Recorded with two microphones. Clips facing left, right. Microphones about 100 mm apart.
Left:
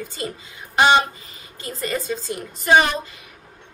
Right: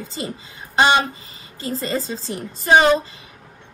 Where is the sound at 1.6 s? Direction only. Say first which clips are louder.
Right 3 dB; 30° right (ahead or behind).